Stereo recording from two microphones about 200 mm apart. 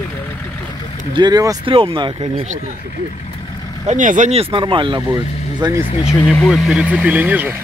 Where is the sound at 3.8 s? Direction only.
40° right (ahead or behind); by 5.8 s 20° right (ahead or behind).